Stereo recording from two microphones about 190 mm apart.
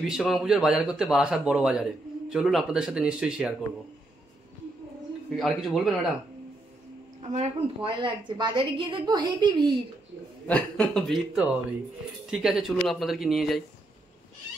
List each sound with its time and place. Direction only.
0.0 s a man's voice: centre (ahead or behind)
5.4 s a man's voice: centre (ahead or behind)
7.2 s a woman's voice: 35° right (ahead or behind)
10.4 s a man's voice: 5° left (ahead or behind)